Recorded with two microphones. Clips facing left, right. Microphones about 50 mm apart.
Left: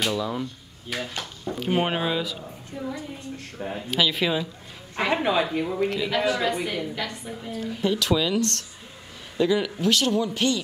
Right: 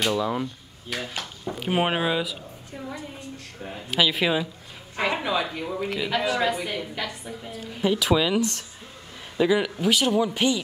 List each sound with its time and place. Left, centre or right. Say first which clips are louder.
0.1 s speech: right 2 dB; centre
3.6 s speech: left 5 dB; left
3.9 s a man's voice: right 2 dB; centre
4.9 s a woman's voice: left 2 dB; centre